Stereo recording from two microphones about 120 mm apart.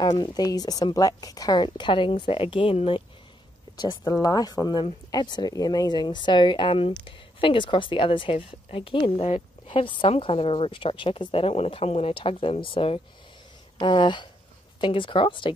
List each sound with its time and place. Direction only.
0.0 s speech: 35° left (ahead or behind)
3.7 s speech: 35° left (ahead or behind)